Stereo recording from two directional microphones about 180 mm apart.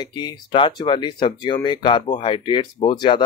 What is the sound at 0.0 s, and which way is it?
Speech, 25° left (ahead or behind).